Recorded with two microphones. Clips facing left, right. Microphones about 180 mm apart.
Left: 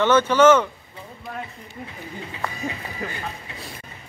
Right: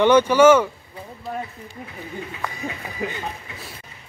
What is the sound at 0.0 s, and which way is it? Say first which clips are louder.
Speech: right 2 dB; 15° right (ahead or behind).